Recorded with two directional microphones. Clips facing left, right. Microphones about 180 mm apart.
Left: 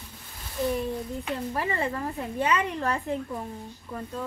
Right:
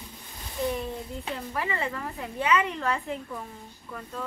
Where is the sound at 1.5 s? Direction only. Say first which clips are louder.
Left 1 dB; 40° left (ahead or behind).